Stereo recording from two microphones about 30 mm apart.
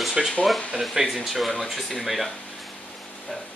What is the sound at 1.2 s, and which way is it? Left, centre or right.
Speech, centre.